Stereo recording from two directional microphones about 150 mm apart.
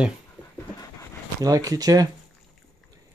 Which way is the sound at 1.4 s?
25° right (ahead or behind).